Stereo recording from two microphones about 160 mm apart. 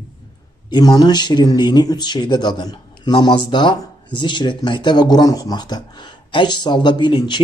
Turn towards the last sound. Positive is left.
turn(degrees=25)  # may be behind; listen again after turning